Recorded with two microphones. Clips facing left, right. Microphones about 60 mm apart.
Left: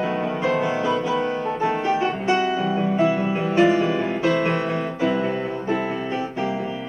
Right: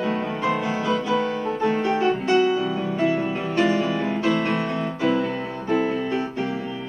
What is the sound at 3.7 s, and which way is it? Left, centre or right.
Music, left.